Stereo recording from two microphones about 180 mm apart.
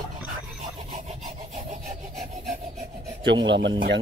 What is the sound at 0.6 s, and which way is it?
Rub, 40° right (ahead or behind).